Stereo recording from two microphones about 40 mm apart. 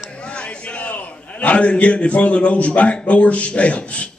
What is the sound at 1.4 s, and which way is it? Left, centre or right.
Speech, left.